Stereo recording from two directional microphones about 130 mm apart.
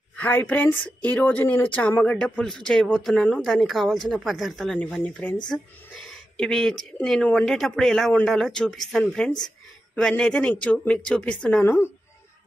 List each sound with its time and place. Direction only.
0.1 s a woman's voice: 15° left (ahead or behind)
11.6 s a woman's voice: 15° left (ahead or behind)